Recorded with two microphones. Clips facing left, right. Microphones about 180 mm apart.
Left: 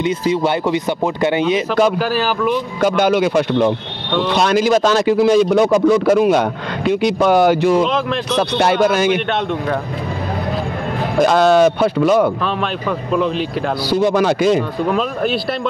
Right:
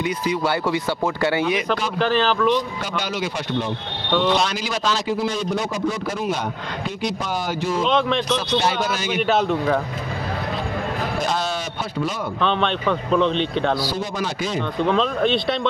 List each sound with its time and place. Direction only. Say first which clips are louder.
0.0 s speech: left 6 dB; 25° left (ahead or behind)
2.0 s speech: left 1 dB; 10° left (ahead or behind)
2.8 s speech: left 12 dB; 55° left (ahead or behind)
4.4 s speech: left 10 dB; 55° left (ahead or behind)
5.0 s a man's voice: left 11 dB; 80° left
7.8 s speech: left 2 dB; centre (ahead or behind)
8.4 s speech: left 7 dB; 60° left (ahead or behind)
9.1 s speech: left 1 dB; centre (ahead or behind)
11.2 s speech: left 13 dB; 65° left (ahead or behind)
12.4 s speech: left 1 dB; 5° left (ahead or behind)
13.8 s a man's voice: left 11 dB; 70° left (ahead or behind)
14.9 s speech: right 2 dB; 5° left (ahead or behind)